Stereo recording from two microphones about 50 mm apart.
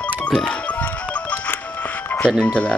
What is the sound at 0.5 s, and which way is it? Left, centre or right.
Music, left.